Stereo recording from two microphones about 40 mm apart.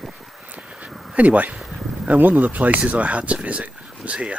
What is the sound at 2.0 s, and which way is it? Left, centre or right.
Speech, right.